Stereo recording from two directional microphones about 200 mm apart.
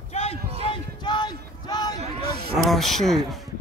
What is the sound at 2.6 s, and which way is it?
Speech, centre (ahead or behind).